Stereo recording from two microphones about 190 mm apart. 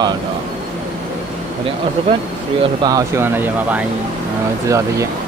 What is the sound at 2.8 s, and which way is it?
Speech, 20° right (ahead or behind).